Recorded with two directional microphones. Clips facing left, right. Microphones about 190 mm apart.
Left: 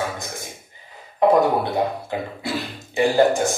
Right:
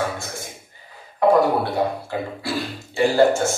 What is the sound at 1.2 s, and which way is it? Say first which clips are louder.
Speech: even; 20° left (ahead or behind).